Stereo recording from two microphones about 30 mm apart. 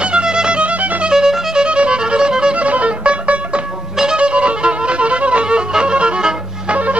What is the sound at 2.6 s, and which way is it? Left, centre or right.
Music, right.